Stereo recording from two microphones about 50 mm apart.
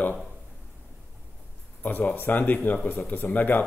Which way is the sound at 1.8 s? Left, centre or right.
Left.